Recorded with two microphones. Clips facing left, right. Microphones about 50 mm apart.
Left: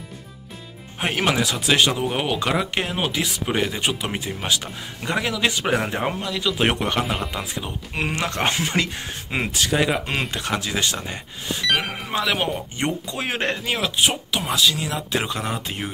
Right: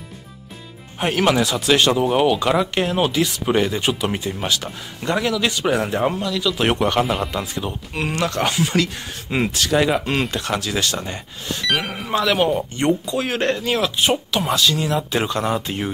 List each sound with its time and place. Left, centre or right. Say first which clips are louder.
0.9 s speech: right 4 dB; centre
5.3 s speech: right 2 dB; left
6.7 s speech: right 4 dB; centre
7.9 s speech: right 2 dB; centre
8.3 s speech: right 3 dB; left
9.3 s speech: right 4 dB; centre
11.6 s speech: right 1 dB; centre
13.1 s speech: right 4 dB; left; by 15.9 s centre